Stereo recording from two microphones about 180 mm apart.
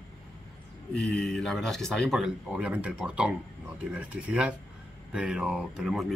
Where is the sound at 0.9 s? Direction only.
Centre (ahead or behind).